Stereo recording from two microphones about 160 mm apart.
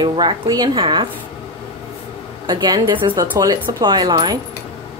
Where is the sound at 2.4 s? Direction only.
25° right (ahead or behind).